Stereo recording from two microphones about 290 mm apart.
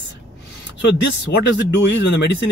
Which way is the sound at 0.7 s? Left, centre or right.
Left.